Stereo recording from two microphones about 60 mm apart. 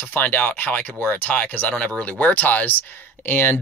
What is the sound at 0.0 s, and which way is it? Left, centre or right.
Speech, left.